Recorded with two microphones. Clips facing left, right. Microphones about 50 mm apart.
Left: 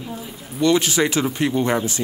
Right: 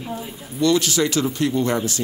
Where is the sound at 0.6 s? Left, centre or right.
Left.